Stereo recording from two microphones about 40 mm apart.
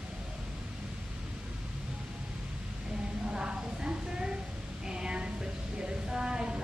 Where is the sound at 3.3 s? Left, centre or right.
Right.